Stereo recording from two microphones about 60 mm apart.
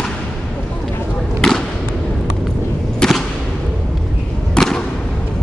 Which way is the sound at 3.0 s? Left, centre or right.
Centre.